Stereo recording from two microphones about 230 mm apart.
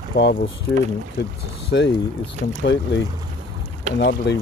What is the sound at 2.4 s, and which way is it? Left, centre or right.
Speech, left.